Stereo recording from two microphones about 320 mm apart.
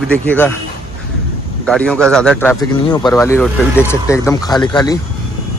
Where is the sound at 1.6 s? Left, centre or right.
Centre.